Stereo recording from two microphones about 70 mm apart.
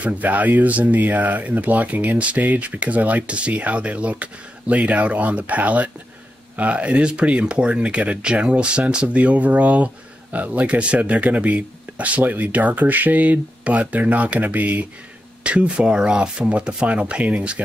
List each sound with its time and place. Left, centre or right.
0.0 s speech: right